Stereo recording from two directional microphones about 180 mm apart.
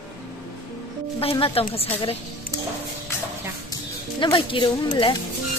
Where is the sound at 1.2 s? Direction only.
30° left (ahead or behind).